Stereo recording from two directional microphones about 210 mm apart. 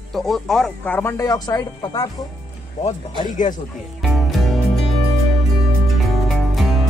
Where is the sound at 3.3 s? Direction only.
35° left (ahead or behind).